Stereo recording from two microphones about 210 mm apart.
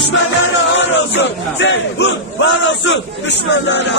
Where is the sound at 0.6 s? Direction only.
55° left (ahead or behind).